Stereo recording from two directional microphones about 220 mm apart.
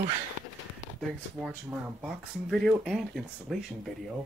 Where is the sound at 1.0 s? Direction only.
Centre (ahead or behind).